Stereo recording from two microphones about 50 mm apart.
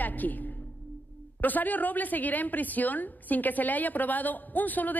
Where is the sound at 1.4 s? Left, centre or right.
Left.